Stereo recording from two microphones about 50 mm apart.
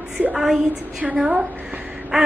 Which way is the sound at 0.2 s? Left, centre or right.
Right.